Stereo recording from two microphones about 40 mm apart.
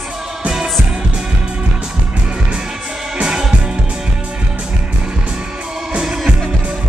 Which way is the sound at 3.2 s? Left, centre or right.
Centre.